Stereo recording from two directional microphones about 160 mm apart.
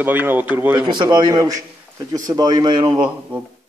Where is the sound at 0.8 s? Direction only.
30° right (ahead or behind).